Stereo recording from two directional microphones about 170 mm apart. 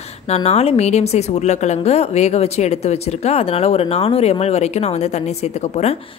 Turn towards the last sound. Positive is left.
turn(degrees=40)  # may be behind; listen again after turning